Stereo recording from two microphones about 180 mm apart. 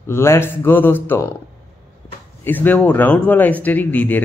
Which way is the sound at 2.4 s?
10° left (ahead or behind).